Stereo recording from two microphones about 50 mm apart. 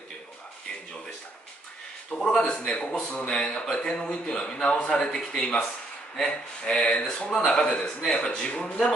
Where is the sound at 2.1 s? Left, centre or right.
Centre.